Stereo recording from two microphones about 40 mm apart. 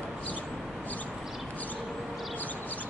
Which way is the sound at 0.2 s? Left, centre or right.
Left.